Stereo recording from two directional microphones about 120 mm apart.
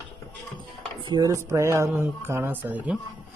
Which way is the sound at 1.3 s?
25° right (ahead or behind).